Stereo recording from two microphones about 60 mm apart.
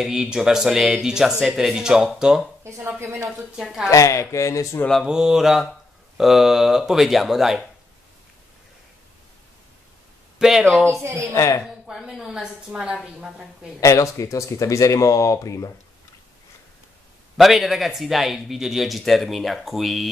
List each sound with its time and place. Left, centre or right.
0.0 s speech: centre
3.0 s speech: right
3.5 s speech: centre
3.9 s speech: left
5.0 s speech: centre
10.4 s speech: centre
10.9 s speech: right
11.3 s speech: left
11.6 s speech: centre
13.7 s speech: left
17.4 s speech: centre